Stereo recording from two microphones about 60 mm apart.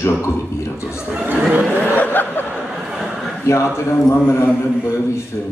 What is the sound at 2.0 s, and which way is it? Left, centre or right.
Chuckle, left.